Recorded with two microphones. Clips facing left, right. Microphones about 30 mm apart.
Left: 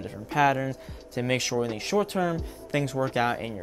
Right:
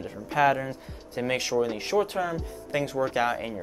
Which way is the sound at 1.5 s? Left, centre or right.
Centre.